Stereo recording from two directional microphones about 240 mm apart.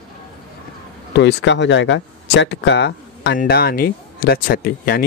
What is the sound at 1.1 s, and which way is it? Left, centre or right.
Speech, left.